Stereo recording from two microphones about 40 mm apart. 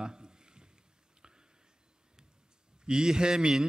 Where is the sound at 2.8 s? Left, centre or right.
Centre.